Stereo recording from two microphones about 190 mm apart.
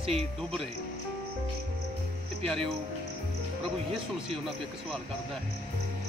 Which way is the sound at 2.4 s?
Centre (ahead or behind).